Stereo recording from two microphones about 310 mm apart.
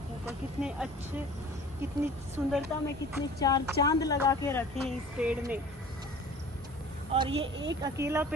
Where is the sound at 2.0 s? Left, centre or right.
Centre.